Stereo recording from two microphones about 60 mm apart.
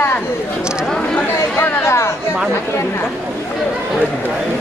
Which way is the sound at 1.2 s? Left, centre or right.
Left.